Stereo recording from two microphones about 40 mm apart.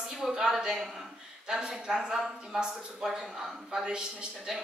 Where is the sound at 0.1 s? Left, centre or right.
Centre.